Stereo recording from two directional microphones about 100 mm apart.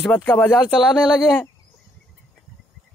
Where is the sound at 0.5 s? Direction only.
Centre (ahead or behind).